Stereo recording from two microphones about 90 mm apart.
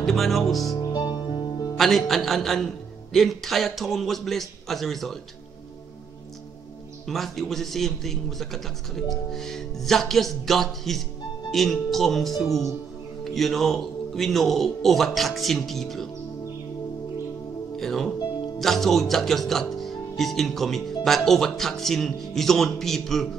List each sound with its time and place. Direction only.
0.0 s speech: centre (ahead or behind)
0.7 s music: 45° left (ahead or behind)
1.8 s speech: centre (ahead or behind)
7.1 s speech: centre (ahead or behind)
17.7 s speech: 5° left (ahead or behind)